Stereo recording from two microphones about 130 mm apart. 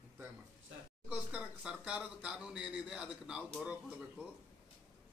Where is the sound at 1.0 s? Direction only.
10° right (ahead or behind).